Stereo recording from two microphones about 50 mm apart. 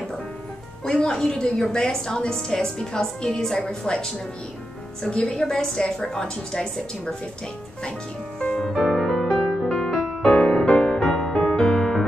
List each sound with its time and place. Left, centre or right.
0.8 s a woman's voice: centre
8.5 s music: centre
9.3 s music: centre